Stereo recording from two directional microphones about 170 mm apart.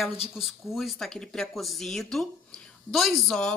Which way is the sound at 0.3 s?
Centre (ahead or behind).